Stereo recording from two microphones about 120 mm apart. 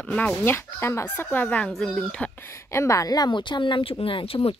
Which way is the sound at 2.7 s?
25° left (ahead or behind).